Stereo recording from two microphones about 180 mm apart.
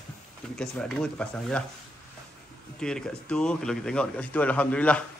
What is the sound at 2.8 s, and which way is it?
Speech, 5° left (ahead or behind).